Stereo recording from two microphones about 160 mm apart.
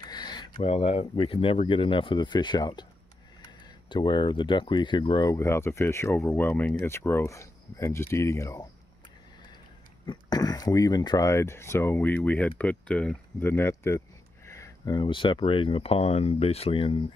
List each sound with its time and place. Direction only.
0.0 s a sound: 25° left (ahead or behind)
0.7 s speech: 40° left (ahead or behind); by 8.6 s 20° left (ahead or behind)
10.0 s speech: 25° left (ahead or behind)